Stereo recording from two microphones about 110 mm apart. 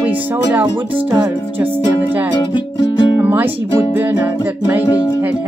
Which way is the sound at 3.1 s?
15° right (ahead or behind).